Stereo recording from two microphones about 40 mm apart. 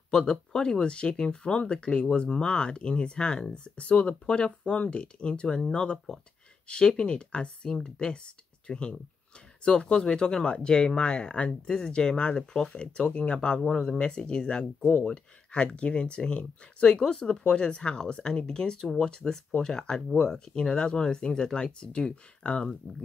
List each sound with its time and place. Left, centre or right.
0.1 s speech: centre
11.6 s speech: centre